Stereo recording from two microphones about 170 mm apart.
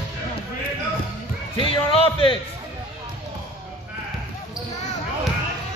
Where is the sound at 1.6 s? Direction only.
30° left (ahead or behind).